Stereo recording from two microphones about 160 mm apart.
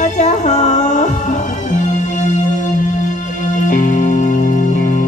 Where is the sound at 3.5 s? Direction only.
55° left (ahead or behind).